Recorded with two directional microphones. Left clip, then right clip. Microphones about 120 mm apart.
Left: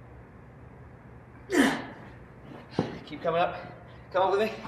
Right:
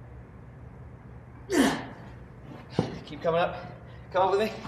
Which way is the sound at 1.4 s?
45° right (ahead or behind).